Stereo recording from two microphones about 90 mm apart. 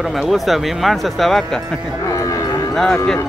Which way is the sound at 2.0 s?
35° left (ahead or behind).